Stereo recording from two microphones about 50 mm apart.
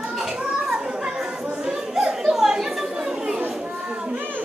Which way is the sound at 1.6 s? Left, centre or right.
Centre.